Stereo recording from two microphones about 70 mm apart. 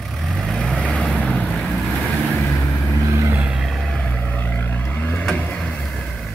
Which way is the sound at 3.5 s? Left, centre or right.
Centre.